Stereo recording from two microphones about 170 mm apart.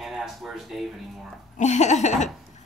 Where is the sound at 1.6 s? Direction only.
45° left (ahead or behind).